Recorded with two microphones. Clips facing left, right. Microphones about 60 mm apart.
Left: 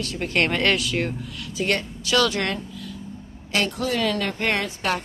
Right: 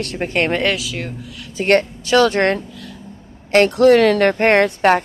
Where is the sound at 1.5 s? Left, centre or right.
Right.